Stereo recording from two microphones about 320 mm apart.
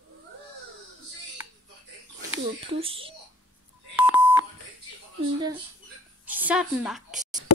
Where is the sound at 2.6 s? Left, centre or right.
Centre.